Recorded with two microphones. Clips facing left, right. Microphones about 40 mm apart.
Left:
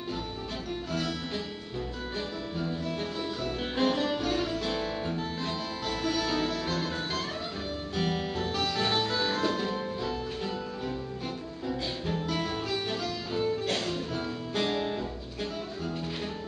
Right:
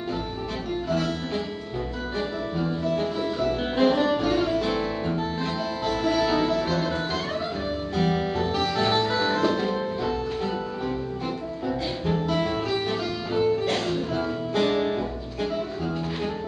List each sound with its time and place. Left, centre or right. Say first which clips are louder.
0.9 s music: right 4 dB; centre
7.9 s music: right 6 dB; centre
11.6 s music: right 5 dB; centre